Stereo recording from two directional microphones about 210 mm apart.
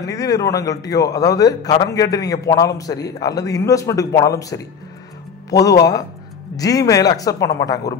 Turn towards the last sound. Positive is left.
turn(degrees=15)  # may be behind; listen again after turning